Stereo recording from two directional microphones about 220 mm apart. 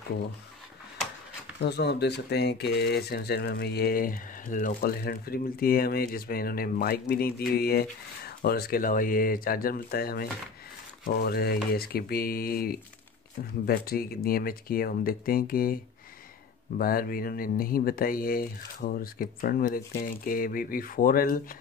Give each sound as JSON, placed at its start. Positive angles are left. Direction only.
{"t": 1.6, "sound": "speech", "side_deg": 50}